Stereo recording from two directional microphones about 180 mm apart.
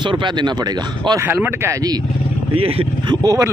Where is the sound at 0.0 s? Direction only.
25° right (ahead or behind).